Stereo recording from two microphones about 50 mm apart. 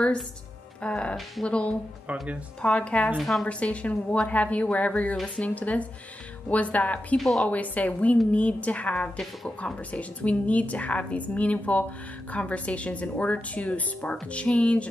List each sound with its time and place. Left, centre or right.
0.8 s a woman's voice: left
3.2 s a woman's voice: centre
3.4 s a woman's voice: left
7.2 s a woman's voice: centre
7.4 s a woman's voice: left